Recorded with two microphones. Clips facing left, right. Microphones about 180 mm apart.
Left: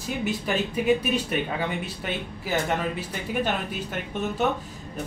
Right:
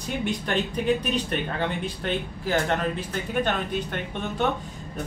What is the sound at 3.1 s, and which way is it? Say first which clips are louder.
Speech: right 1 dB; 5° left (ahead or behind).